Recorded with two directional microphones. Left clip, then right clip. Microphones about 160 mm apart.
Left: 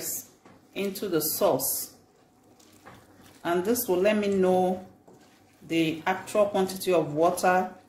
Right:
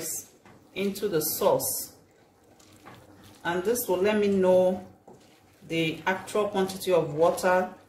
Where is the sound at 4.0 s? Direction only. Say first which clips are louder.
Left 1 dB; 35° left (ahead or behind).